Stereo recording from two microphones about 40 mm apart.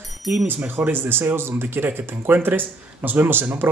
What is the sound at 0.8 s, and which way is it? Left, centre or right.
Speech, right.